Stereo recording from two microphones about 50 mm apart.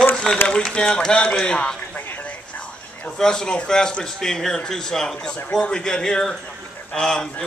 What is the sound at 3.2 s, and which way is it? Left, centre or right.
A man's voice, centre.